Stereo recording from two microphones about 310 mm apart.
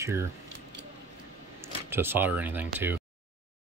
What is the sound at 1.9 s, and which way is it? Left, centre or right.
Speech, centre.